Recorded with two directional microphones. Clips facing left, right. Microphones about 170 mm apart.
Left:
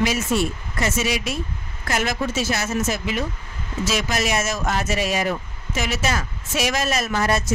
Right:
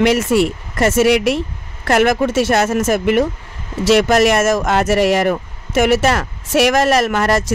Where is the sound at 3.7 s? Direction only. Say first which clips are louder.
Right 11 dB; 75° right (ahead or behind).